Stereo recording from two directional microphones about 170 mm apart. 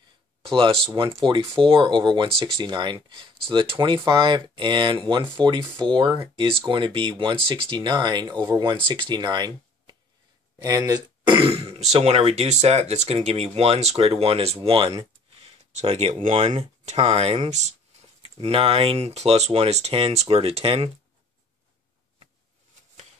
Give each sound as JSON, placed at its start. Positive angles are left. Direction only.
{"t": 1.2, "sound": "speech", "side_deg": -30}
{"t": 10.6, "sound": "throat clearing", "side_deg": -20}
{"t": 11.9, "sound": "speech", "side_deg": -40}
{"t": 15.8, "sound": "speech", "side_deg": -40}